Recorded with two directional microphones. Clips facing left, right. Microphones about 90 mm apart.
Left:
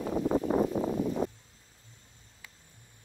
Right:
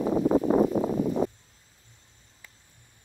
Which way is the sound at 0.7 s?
70° right (ahead or behind).